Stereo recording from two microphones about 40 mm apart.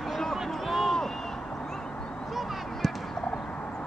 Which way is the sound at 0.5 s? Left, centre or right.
Centre.